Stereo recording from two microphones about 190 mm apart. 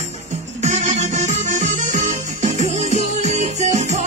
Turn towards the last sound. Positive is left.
turn(degrees=-40)  # may be behind; listen again after turning